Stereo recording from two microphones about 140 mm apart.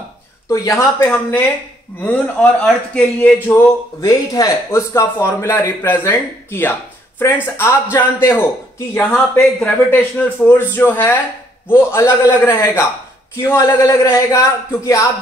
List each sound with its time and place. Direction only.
0.5 s speech: 20° left (ahead or behind)
2.0 s speech: 10° left (ahead or behind)
4.0 s speech: 25° left (ahead or behind)